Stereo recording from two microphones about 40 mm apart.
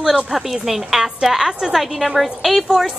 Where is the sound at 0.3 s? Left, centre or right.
Centre.